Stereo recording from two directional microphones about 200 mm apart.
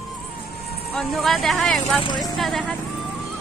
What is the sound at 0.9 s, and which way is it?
Speech, centre (ahead or behind).